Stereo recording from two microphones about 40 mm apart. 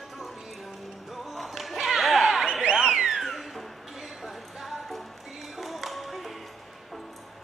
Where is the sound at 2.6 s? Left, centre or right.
Centre.